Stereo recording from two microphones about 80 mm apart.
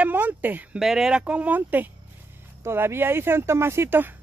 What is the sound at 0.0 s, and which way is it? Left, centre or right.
Speech, right.